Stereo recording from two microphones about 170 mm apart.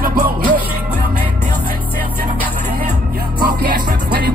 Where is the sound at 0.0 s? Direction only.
60° right (ahead or behind).